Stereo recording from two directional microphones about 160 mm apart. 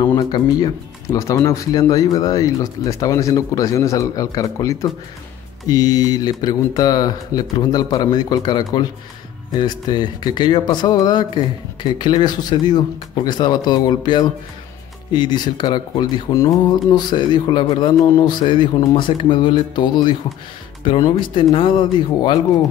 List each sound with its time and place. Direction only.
0.0 s speech: 25° left (ahead or behind)